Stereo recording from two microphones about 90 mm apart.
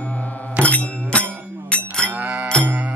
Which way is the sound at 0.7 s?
15° left (ahead or behind).